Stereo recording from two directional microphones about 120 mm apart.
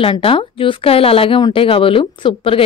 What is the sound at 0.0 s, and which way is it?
A woman's voice, 50° left (ahead or behind).